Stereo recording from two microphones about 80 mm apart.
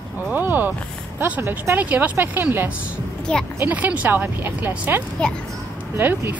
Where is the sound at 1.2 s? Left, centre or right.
Right.